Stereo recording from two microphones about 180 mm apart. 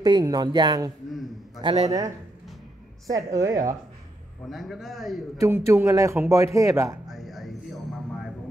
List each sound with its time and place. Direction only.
0.0 s speech: 20° right (ahead or behind)
4.5 s a man's voice: centre (ahead or behind)
5.4 s a man's voice: 15° right (ahead or behind)
7.1 s music: centre (ahead or behind)